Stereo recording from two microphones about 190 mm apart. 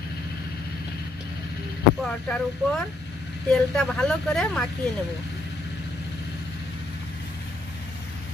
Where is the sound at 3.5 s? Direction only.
Centre (ahead or behind).